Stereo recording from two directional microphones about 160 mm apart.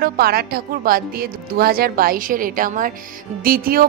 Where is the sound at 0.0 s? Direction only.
70° right (ahead or behind).